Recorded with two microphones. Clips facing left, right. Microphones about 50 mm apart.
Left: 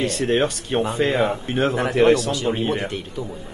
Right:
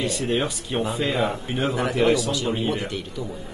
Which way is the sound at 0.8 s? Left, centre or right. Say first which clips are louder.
Left 4 dB; left.